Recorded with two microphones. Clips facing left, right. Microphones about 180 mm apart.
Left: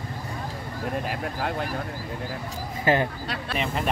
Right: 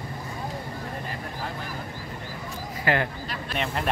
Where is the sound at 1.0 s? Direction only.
75° left (ahead or behind).